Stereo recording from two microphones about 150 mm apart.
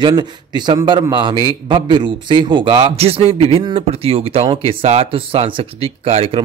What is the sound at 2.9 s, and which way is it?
Speech, 45° right (ahead or behind).